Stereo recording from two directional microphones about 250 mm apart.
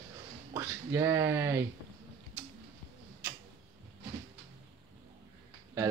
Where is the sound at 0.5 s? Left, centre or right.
Centre.